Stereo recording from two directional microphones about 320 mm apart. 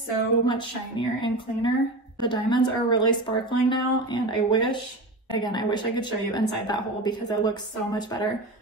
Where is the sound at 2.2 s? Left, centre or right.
Centre.